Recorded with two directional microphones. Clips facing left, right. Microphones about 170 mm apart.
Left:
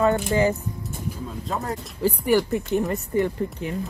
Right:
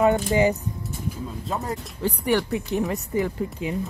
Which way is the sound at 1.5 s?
Centre (ahead or behind).